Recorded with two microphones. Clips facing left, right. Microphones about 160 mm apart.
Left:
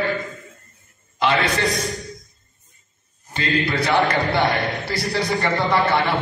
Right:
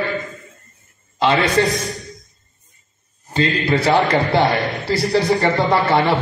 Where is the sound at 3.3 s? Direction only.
25° right (ahead or behind).